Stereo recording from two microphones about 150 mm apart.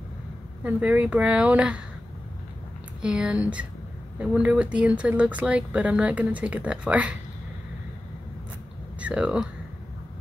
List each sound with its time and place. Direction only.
0.7 s speech: 10° right (ahead or behind)
3.0 s speech: 5° right (ahead or behind)
9.0 s speech: 5° right (ahead or behind)